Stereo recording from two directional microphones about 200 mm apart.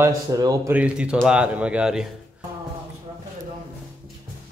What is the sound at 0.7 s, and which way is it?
A man's voice, 5° right (ahead or behind).